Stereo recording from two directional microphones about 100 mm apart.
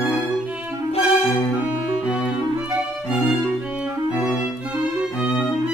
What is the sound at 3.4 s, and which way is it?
Music, 10° right (ahead or behind).